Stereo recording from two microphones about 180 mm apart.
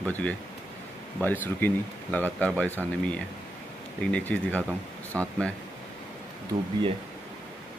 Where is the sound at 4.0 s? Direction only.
5° left (ahead or behind).